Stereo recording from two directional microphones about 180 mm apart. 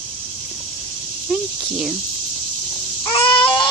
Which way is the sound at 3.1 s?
30° left (ahead or behind).